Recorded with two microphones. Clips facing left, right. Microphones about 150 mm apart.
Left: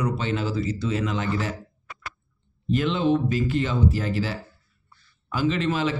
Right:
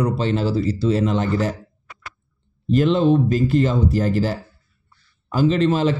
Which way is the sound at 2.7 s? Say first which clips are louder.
Right 6 dB; 40° right (ahead or behind).